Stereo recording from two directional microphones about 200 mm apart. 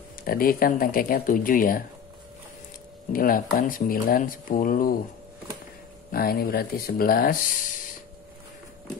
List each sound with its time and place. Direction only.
0.2 s speech: 45° left (ahead or behind)
3.1 s speech: 45° left (ahead or behind)
6.1 s speech: 50° left (ahead or behind)